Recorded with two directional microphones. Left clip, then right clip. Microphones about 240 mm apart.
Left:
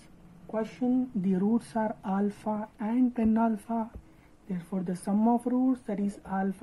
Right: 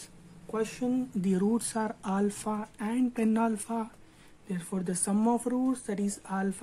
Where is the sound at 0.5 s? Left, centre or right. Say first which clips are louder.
Left 1 dB; centre.